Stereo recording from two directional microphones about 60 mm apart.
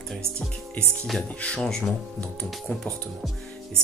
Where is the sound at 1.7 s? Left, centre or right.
Centre.